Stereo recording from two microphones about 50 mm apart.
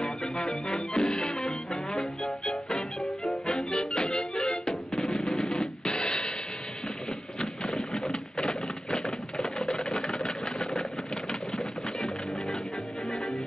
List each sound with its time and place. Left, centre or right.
0.0 s music: centre
3.7 s music: centre
7.3 s a sound: centre
8.4 s typewriter: centre